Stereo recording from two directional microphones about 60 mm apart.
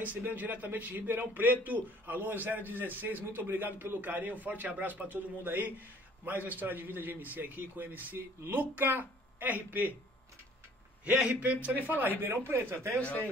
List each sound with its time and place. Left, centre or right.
0.0 s a man's voice: right
11.1 s a man's voice: centre
12.2 s a man's voice: right